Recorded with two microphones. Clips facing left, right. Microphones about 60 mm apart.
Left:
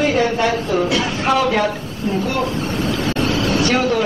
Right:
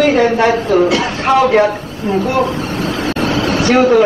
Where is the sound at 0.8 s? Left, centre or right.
Right.